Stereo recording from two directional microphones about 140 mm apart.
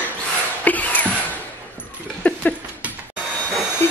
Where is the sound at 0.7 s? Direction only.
10° left (ahead or behind).